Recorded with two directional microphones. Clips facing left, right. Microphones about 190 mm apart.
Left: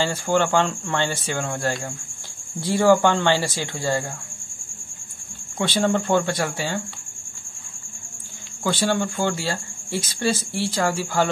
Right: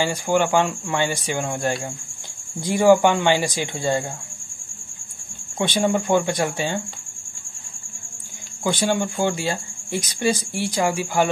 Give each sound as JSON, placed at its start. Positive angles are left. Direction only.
{"t": 0.0, "sound": "speech", "side_deg": -15}
{"t": 5.6, "sound": "speech", "side_deg": -15}
{"t": 8.6, "sound": "speech", "side_deg": -15}